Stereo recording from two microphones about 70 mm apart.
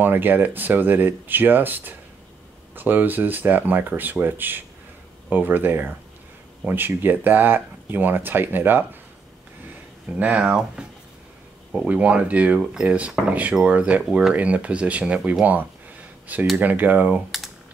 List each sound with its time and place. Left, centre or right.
0.0 s speech: right
10.0 s speech: centre
11.9 s speech: centre
16.5 s speech: right